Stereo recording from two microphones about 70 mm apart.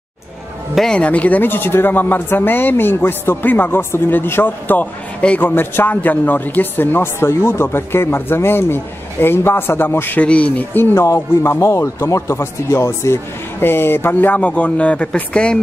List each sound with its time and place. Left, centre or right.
0.9 s speech: centre
10.2 s speech: centre
11.0 s speech: left
14.4 s speech: centre